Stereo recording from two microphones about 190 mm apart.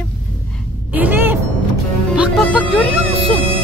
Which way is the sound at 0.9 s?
10° right (ahead or behind).